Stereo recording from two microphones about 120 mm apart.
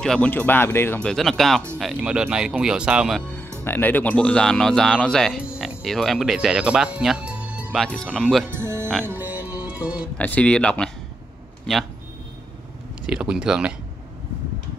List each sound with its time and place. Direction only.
0.0 s speech: 5° left (ahead or behind)
0.3 s speech: 15° left (ahead or behind)
2.0 s speech: 10° right (ahead or behind)
3.2 s music: 15° left (ahead or behind)
3.6 s speech: 15° left (ahead or behind)
5.4 s speech: 10° right (ahead or behind)
7.7 s speech: 5° left (ahead or behind)
8.5 s music: 20° right (ahead or behind)
10.1 s speech: 10° left (ahead or behind)
13.0 s speech: 10° right (ahead or behind)